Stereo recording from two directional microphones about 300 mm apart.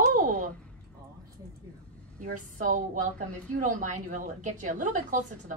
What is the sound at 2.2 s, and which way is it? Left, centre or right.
A woman's voice, right.